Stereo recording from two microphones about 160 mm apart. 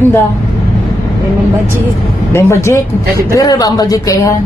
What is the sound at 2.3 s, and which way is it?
A woman's voice, 15° left (ahead or behind).